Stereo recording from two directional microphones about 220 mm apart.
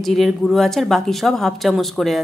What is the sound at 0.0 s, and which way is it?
A woman's voice, centre (ahead or behind).